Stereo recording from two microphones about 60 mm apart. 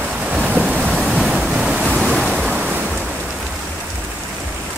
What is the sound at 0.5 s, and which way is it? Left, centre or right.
Waves, right.